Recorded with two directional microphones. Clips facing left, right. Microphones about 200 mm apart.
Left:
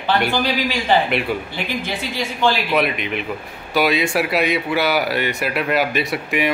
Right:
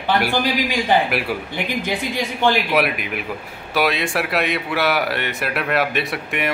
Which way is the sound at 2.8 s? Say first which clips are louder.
Left 2 dB; 5° right (ahead or behind).